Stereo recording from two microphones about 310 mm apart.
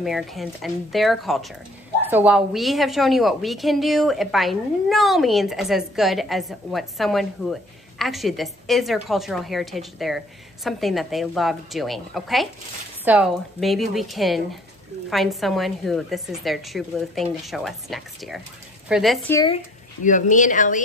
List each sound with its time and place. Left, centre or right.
0.0 s a woman's voice: centre; by 20.8 s left